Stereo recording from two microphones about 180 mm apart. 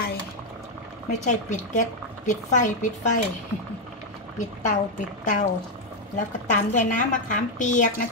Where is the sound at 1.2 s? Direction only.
45° left (ahead or behind).